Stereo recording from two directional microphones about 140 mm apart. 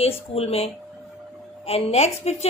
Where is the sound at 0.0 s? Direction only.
45° left (ahead or behind).